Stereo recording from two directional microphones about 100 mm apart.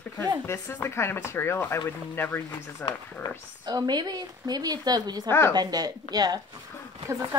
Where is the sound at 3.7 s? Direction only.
45° right (ahead or behind).